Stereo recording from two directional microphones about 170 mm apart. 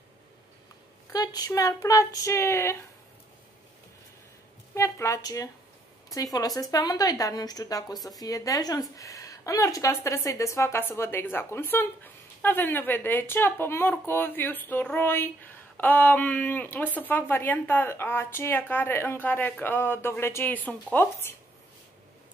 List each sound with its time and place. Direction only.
1.1 s a woman's voice: 20° left (ahead or behind)
4.7 s a woman's voice: 15° left (ahead or behind)